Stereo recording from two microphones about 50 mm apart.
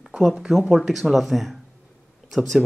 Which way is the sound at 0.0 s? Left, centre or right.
Centre.